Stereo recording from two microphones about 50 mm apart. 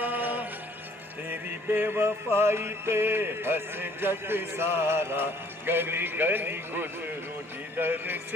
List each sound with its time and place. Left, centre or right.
0.0 s music: right
1.7 s a sound: right
7.7 s music: right